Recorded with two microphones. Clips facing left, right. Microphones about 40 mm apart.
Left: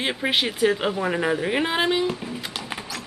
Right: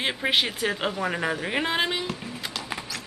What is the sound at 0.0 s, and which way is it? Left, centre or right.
Speech, centre.